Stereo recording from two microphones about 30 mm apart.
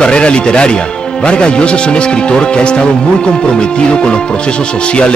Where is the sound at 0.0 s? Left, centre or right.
Left.